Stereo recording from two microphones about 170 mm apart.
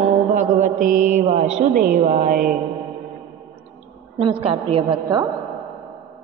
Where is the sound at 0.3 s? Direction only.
50° right (ahead or behind).